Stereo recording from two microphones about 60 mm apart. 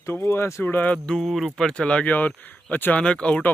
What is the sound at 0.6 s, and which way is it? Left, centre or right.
Speech, left.